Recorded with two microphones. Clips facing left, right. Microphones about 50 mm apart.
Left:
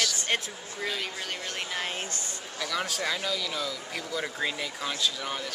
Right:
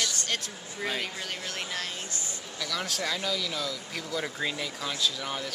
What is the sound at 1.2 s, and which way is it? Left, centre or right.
Speech, centre.